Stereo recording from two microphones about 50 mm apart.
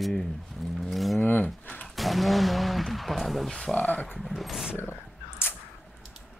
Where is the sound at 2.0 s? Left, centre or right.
Centre.